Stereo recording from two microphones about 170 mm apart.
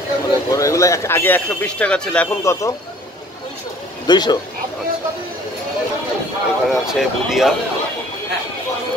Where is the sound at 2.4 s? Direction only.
15° left (ahead or behind).